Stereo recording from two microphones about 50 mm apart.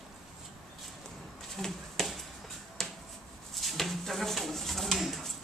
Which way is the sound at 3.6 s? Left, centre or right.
Centre.